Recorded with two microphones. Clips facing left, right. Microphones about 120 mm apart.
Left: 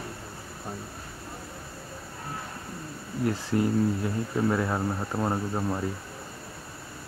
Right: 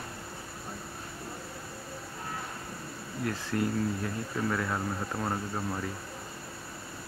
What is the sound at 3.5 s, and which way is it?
Speech, 20° left (ahead or behind).